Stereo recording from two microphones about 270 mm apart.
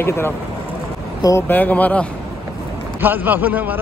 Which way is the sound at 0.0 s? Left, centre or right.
Centre.